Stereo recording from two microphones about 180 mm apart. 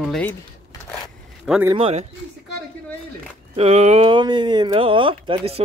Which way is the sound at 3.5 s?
35° right (ahead or behind).